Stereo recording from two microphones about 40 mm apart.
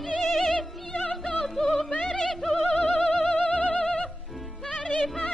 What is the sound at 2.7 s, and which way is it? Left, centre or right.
Music, left.